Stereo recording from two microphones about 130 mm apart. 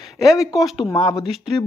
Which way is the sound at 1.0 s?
35° left (ahead or behind).